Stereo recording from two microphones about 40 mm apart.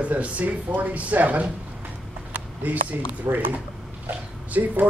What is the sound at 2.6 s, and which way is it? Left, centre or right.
Speech, right.